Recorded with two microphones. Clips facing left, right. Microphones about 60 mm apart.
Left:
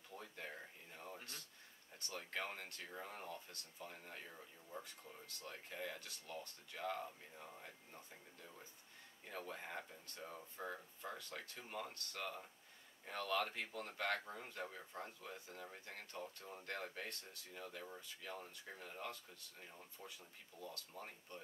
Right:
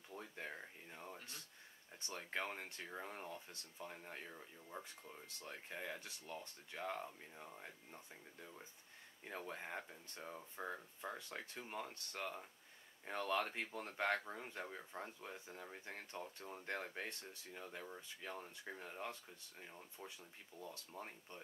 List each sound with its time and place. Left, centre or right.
0.1 s a sound: centre
2.0 s speech: right
5.7 s speech: right
9.3 s speech: right
14.2 s speech: centre
20.6 s speech: right